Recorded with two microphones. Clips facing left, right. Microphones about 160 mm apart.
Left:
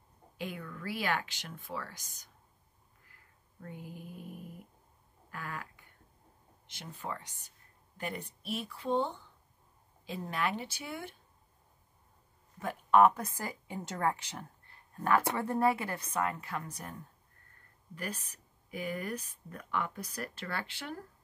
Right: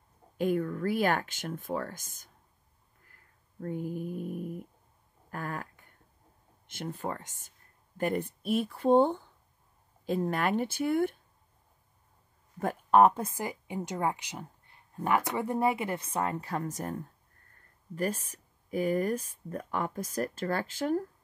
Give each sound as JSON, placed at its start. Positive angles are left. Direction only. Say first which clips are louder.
{"t": 0.4, "sound": "speech", "louder": "right 12 dB", "side_deg": -45}
{"t": 3.1, "sound": "snoring", "louder": "even", "side_deg": -45}
{"t": 5.3, "sound": "a sound", "louder": "right 5 dB", "side_deg": -45}
{"t": 6.7, "sound": "speech", "louder": "right 6 dB", "side_deg": -50}
{"t": 12.5, "sound": "speech", "louder": "right 3 dB", "side_deg": -50}
{"t": 13.0, "sound": "speech", "louder": "right 2 dB", "side_deg": -25}
{"t": 17.9, "sound": "speech", "louder": "right 9 dB", "side_deg": -40}